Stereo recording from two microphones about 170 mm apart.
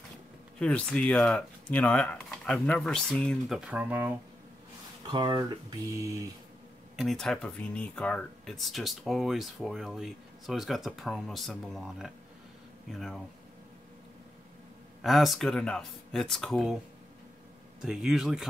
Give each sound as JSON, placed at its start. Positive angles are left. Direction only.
{"t": 0.6, "sound": "speech", "side_deg": 5}
{"t": 5.0, "sound": "speech", "side_deg": -25}
{"t": 7.0, "sound": "speech", "side_deg": 0}
{"t": 15.0, "sound": "speech", "side_deg": 0}
{"t": 17.8, "sound": "speech", "side_deg": -5}